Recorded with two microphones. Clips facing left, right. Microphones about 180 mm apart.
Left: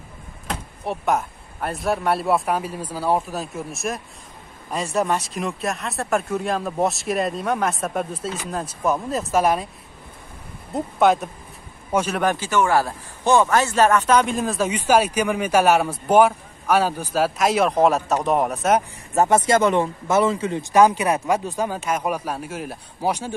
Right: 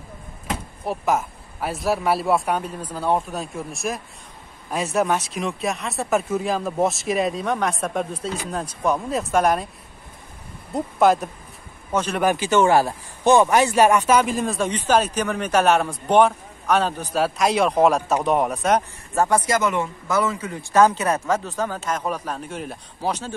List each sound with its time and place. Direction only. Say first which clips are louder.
0.5 s speech: right 1 dB; centre (ahead or behind)
10.7 s speech: even; centre (ahead or behind)
12.2 s speech: right 1 dB; 10° right (ahead or behind)
12.4 s speech: right 4 dB; 25° right (ahead or behind); by 18.9 s 5° left (ahead or behind)
19.1 s speech: left 3 dB; 25° left (ahead or behind)
20.7 s speech: left 1 dB; 15° left (ahead or behind)